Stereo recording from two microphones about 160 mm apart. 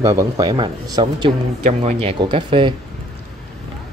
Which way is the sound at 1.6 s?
40° right (ahead or behind).